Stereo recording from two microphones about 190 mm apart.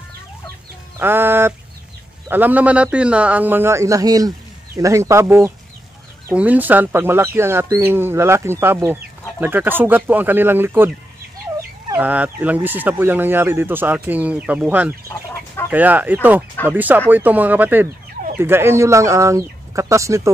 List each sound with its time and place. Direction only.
0.9 s speech: 10° right (ahead or behind)
12.0 s speech: 10° right (ahead or behind)